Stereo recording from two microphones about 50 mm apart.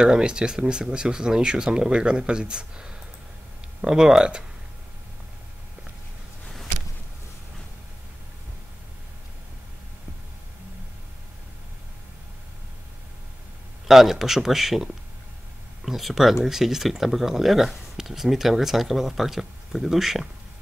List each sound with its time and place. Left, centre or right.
0.0 s speech: centre
13.8 s speech: centre